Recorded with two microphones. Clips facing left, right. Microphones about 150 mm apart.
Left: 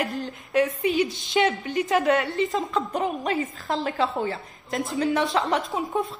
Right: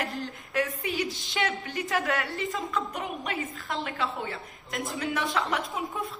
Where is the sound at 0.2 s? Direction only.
20° left (ahead or behind).